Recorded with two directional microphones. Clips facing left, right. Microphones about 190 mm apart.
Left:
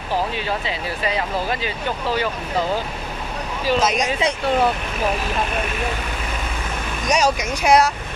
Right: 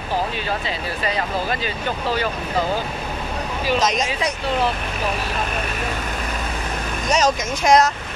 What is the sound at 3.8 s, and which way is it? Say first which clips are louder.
Speech: left 1 dB; 10° left (ahead or behind).